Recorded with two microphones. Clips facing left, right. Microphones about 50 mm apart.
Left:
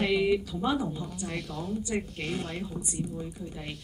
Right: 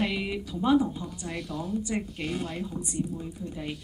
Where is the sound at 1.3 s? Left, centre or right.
Centre.